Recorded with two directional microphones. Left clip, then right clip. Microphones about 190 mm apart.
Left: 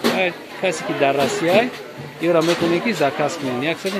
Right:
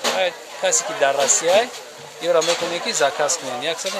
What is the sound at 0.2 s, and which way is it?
Speech, 15° right (ahead or behind).